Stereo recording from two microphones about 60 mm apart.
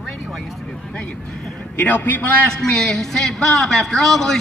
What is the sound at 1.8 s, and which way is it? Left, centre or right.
Speech, left.